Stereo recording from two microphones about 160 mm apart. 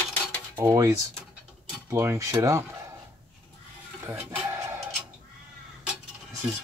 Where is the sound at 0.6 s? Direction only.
20° right (ahead or behind).